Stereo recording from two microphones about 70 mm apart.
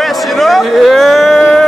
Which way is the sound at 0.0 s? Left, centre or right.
Centre.